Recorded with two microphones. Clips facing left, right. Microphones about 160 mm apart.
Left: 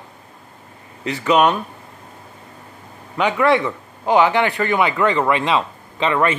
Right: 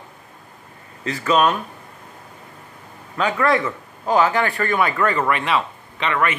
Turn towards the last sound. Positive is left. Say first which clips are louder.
# left 4 dB
turn(degrees=30)  # may be behind; listen again after turning